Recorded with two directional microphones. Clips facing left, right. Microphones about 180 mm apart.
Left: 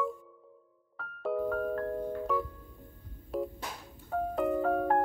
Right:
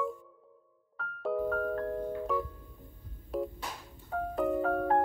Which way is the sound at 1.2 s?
Centre (ahead or behind).